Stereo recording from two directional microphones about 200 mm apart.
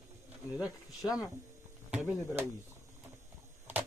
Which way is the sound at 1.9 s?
5° right (ahead or behind).